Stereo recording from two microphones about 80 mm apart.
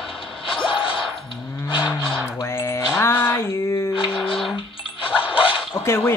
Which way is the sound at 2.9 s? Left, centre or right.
Left.